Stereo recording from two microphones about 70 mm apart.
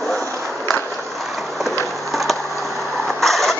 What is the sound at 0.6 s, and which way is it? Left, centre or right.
Ratchet, left.